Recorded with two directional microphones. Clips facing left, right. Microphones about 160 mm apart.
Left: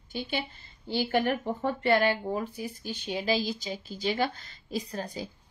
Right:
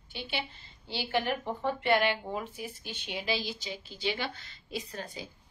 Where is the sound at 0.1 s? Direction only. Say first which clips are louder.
Left 4 dB; 45° left (ahead or behind).